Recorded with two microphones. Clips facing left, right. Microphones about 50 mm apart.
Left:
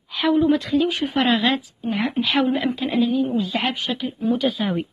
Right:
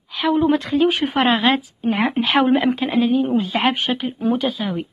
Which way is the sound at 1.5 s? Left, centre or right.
Right.